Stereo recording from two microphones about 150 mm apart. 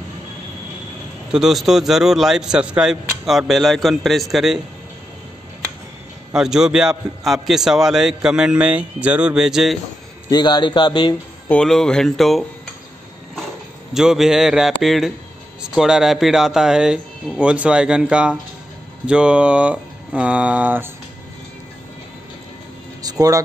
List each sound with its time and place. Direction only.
1.3 s a man's voice: centre (ahead or behind)
6.3 s a man's voice: 5° right (ahead or behind)
10.3 s speech: 30° left (ahead or behind)
11.4 s a man's voice: 5° left (ahead or behind)
13.9 s a man's voice: 5° right (ahead or behind)
23.0 s speech: 25° right (ahead or behind)